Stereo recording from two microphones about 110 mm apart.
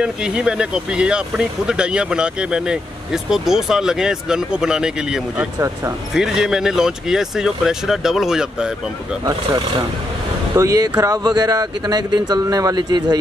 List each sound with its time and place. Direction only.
0.0 s speech: 10° right (ahead or behind)
9.2 s speech: 40° right (ahead or behind)
10.5 s speech: 30° right (ahead or behind)